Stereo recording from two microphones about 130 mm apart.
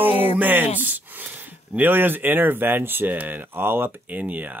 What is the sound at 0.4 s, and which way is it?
Speech, 15° right (ahead or behind).